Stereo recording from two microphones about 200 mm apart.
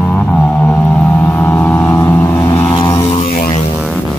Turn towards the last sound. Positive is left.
turn(degrees=35)  # may be behind; listen again after turning